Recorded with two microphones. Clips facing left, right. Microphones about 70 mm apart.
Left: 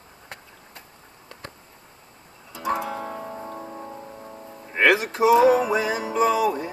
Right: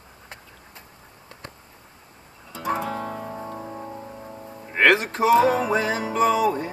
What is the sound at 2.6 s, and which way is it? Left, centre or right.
Music, centre.